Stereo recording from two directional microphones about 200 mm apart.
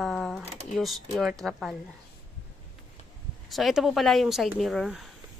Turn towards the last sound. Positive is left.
turn(degrees=0)  # may be behind; listen again after turning